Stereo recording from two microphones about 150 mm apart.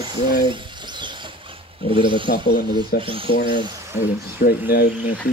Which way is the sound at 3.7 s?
20° right (ahead or behind).